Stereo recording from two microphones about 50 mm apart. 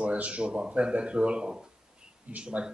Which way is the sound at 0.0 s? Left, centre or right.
Right.